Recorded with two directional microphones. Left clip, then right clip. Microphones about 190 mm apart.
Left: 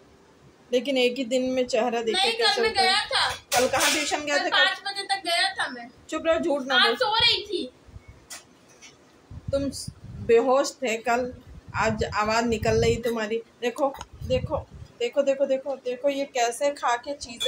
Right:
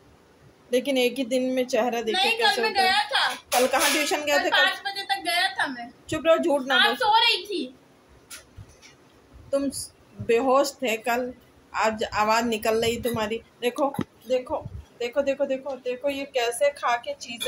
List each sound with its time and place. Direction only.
0.7 s speech: 5° right (ahead or behind)
4.5 s a woman's voice: 5° left (ahead or behind)
9.5 s speech: 5° right (ahead or behind)